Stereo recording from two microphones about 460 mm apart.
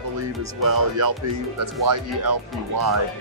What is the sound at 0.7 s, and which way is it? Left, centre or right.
Speech, right.